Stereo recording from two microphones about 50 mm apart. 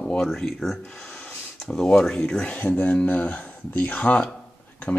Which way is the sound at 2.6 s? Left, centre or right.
Left.